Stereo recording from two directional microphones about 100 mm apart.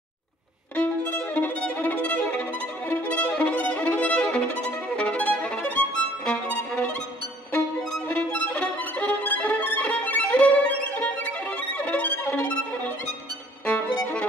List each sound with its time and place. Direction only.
0.7 s violin: 20° left (ahead or behind)